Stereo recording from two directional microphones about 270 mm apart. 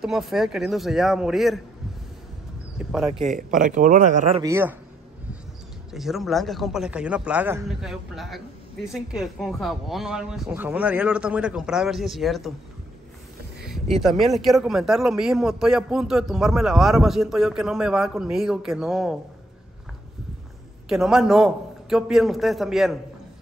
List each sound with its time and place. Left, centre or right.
0.0 s a man's voice: centre
2.8 s a man's voice: centre
3.2 s a man's voice: right
4.4 s speech: centre
5.9 s a man's voice: centre
13.6 s a man's voice: centre
20.9 s a man's voice: centre